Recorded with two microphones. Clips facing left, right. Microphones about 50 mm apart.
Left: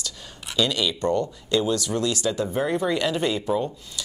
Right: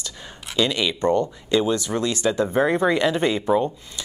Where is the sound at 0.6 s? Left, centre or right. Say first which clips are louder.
Right 2 dB; right.